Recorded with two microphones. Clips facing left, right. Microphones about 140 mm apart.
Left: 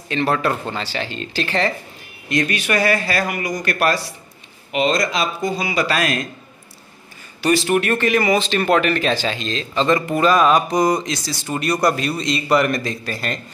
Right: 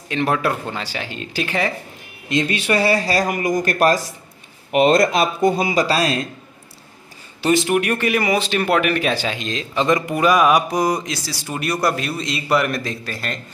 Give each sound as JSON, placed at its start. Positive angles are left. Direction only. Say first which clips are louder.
{"t": 0.1, "sound": "speech", "louder": "even", "side_deg": -10}
{"t": 2.2, "sound": "speech", "louder": "right 1 dB", "side_deg": -20}
{"t": 4.7, "sound": "speech", "louder": "right 5 dB", "side_deg": -55}
{"t": 7.4, "sound": "speech", "louder": "even", "side_deg": -20}